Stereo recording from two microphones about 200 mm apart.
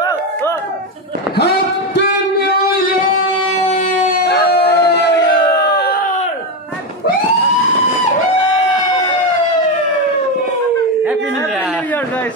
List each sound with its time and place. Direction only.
3.6 s howl: 35° left (ahead or behind); by 6.1 s 50° left (ahead or behind)